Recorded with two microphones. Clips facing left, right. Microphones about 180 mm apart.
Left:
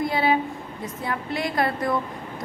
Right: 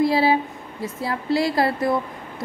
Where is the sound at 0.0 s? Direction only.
30° right (ahead or behind).